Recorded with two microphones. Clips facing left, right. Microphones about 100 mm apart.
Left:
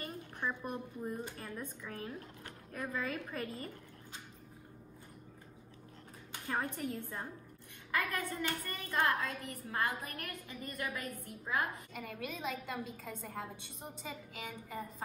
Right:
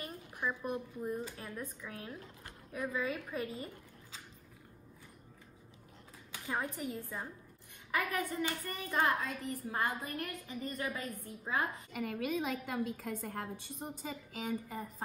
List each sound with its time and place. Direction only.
0.0 s a sound: 5° right (ahead or behind)
1.5 s a woman's voice: centre (ahead or behind)
6.4 s a woman's voice: 10° right (ahead or behind)
7.9 s a woman's voice: 15° right (ahead or behind)
11.9 s a woman's voice: 60° right (ahead or behind)